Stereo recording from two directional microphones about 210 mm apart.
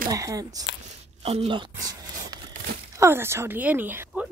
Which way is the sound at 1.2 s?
30° right (ahead or behind).